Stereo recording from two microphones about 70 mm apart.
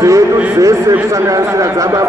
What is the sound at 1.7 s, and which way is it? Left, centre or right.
Speech, right.